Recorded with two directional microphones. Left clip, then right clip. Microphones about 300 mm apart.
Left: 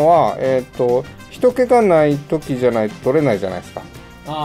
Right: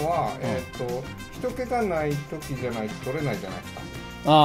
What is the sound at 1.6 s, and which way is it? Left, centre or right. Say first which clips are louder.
Speech: left 13 dB; left.